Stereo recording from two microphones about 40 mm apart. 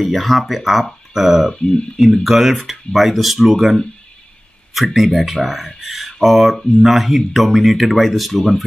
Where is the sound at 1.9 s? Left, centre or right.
Centre.